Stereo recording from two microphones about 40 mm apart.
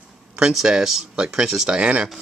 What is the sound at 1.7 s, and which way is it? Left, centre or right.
Speech, right.